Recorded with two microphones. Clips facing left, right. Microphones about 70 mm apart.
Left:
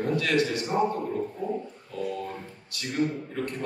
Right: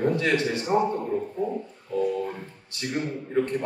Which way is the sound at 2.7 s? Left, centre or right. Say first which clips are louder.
Left 1 dB; right.